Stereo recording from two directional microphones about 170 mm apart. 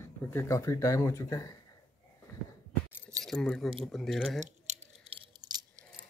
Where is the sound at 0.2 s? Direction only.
15° left (ahead or behind).